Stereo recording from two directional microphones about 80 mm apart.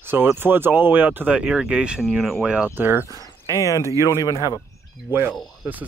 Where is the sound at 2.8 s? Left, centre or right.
Right.